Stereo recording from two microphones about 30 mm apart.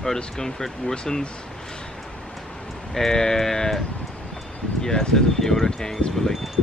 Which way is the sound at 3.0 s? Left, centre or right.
Centre.